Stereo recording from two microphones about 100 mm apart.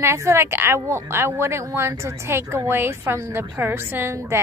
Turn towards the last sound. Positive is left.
turn(degrees=-25)  # may be behind; listen again after turning